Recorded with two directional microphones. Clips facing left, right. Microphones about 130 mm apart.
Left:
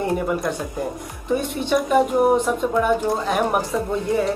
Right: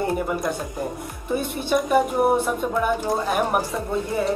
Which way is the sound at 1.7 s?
5° right (ahead or behind).